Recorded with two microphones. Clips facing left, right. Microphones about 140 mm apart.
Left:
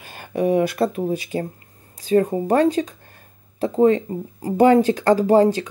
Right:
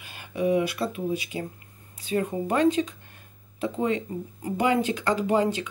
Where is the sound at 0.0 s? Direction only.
45° left (ahead or behind).